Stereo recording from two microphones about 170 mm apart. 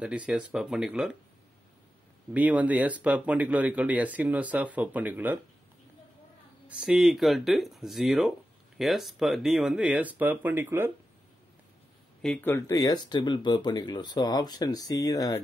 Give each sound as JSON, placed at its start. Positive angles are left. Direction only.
{"t": 0.0, "sound": "speech", "side_deg": -5}
{"t": 2.3, "sound": "speech", "side_deg": -10}
{"t": 6.7, "sound": "speech", "side_deg": -5}
{"t": 12.2, "sound": "speech", "side_deg": 10}